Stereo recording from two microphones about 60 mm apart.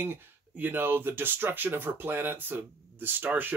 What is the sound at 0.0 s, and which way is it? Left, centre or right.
Speech, right.